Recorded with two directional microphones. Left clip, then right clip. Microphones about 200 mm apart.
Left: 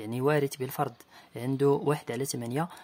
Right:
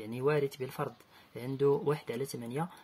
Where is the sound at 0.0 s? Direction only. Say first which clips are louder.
Left 4 dB; 30° left (ahead or behind).